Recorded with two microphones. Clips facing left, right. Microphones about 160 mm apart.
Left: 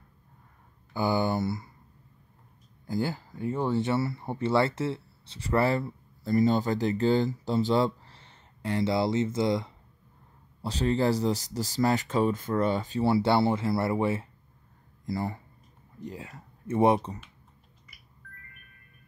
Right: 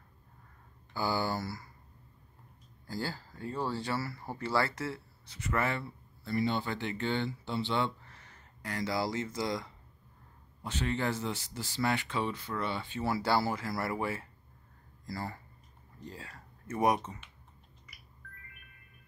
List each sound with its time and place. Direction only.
0.9 s speech: 20° left (ahead or behind)
2.9 s speech: 20° left (ahead or behind)
10.6 s speech: 35° left (ahead or behind)
13.0 s speech: 25° left (ahead or behind)